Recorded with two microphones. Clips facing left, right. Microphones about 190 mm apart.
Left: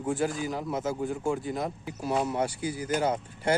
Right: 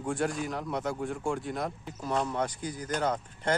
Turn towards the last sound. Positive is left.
turn(degrees=10)  # may be behind; listen again after turning